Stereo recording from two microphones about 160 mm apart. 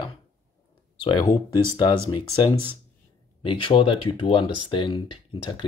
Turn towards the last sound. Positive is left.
turn(degrees=30)  # may be behind; listen again after turning